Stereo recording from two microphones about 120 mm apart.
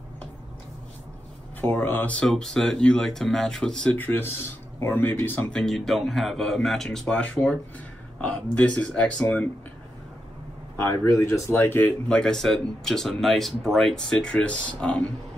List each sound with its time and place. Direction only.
1.6 s speech: 15° left (ahead or behind)
5.6 s speech: centre (ahead or behind)
10.8 s speech: 25° left (ahead or behind)
12.1 s speech: 5° left (ahead or behind)